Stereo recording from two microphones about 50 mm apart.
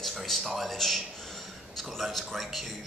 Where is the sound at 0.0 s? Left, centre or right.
Centre.